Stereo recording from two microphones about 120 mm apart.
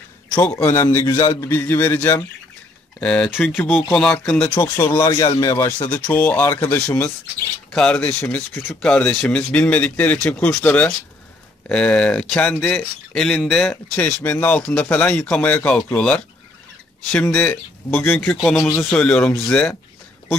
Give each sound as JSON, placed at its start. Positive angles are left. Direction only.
{"t": 0.4, "sound": "a man's voice", "side_deg": 30}
{"t": 0.7, "sound": "a man's voice", "side_deg": 20}
{"t": 4.0, "sound": "speech", "side_deg": 5}
{"t": 5.1, "sound": "speech", "side_deg": 35}
{"t": 5.4, "sound": "speech", "side_deg": 25}